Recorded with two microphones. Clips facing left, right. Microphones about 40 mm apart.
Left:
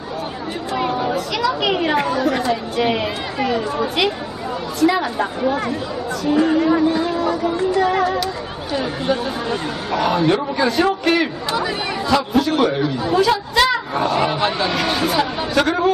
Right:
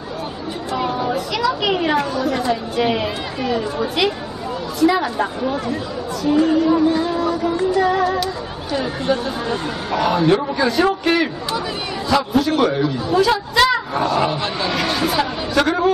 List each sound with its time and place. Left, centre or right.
0.7 s chatter: centre
1.1 s speech: centre
2.0 s speech: centre
2.5 s speech: centre
8.0 s speech: centre